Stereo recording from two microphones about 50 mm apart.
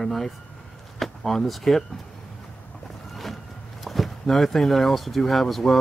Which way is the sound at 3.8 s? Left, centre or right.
Centre.